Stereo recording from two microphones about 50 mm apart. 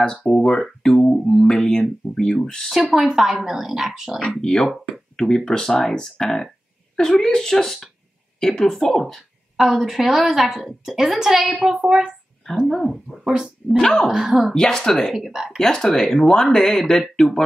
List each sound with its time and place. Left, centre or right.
0.2 s speech: centre
2.7 s speech: centre
4.4 s a woman's voice: centre
12.6 s a woman's voice: centre
14.0 s a woman's voice: centre
14.5 s speech: centre
15.3 s speech: centre
15.6 s speech: centre